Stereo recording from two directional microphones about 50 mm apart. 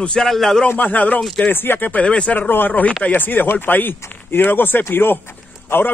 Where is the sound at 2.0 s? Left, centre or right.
Left.